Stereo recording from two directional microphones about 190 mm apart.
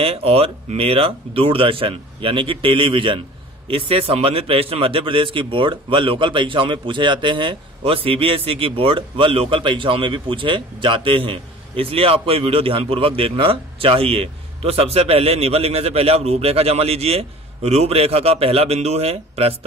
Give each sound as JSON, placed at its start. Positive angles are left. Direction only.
{"t": 0.0, "sound": "a man's voice", "side_deg": -30}